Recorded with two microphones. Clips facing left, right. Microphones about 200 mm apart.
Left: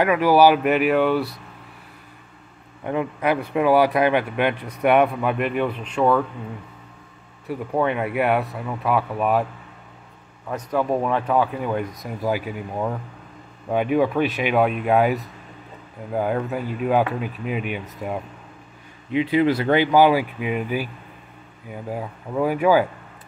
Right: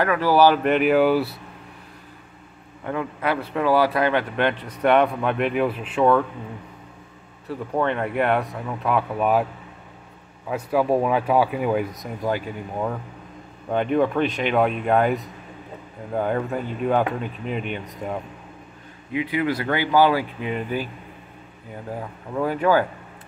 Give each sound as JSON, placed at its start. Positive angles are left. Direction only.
{"t": 0.0, "sound": "speech", "side_deg": 15}
{"t": 2.8, "sound": "a man's voice", "side_deg": 20}
{"t": 7.4, "sound": "speech", "side_deg": 10}
{"t": 10.5, "sound": "speech", "side_deg": -5}
{"t": 19.1, "sound": "a man's voice", "side_deg": 25}